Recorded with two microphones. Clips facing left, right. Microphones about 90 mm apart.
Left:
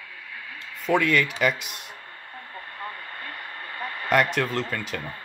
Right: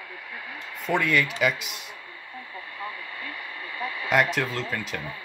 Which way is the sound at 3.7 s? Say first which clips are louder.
Right 1 dB; 50° left (ahead or behind).